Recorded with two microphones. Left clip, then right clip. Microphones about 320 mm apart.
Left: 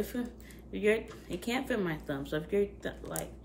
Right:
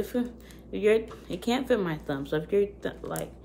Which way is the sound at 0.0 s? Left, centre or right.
Centre.